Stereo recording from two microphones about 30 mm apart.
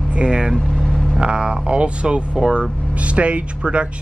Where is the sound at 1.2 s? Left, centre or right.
Right.